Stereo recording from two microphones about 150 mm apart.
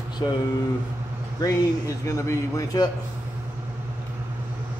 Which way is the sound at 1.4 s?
20° left (ahead or behind).